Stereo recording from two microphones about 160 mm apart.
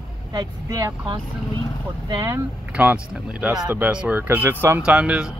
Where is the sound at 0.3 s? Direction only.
25° right (ahead or behind).